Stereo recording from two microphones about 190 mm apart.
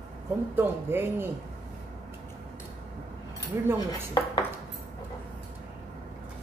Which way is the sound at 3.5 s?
15° right (ahead or behind).